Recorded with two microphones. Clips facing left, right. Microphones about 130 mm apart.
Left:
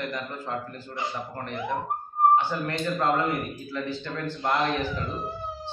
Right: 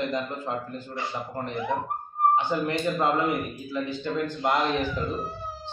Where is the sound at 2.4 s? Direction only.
20° right (ahead or behind).